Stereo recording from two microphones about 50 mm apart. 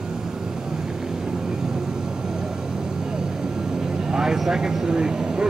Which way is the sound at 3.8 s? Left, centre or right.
Centre.